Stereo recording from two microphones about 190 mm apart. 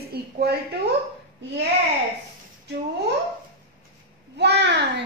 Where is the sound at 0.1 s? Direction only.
55° right (ahead or behind).